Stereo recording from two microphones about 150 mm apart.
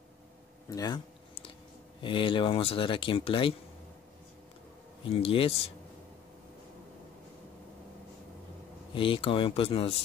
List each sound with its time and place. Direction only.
0.7 s speech: 25° left (ahead or behind)
2.0 s speech: 35° left (ahead or behind)
5.0 s speech: 40° left (ahead or behind)
8.9 s speech: 35° left (ahead or behind)